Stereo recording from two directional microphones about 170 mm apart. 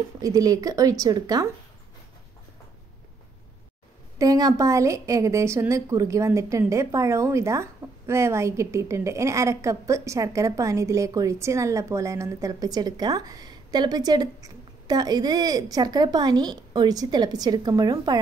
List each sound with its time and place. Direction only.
0.2 s a woman's voice: 20° right (ahead or behind)
4.2 s a woman's voice: 20° right (ahead or behind)